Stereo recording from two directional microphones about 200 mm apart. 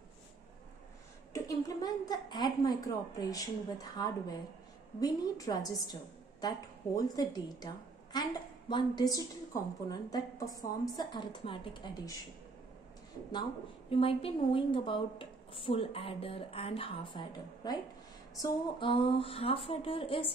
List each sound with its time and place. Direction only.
1.3 s a woman's voice: 20° left (ahead or behind)
13.8 s a woman's voice: 30° left (ahead or behind)